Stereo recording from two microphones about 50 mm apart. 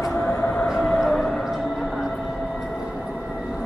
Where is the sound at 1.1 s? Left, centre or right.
Centre.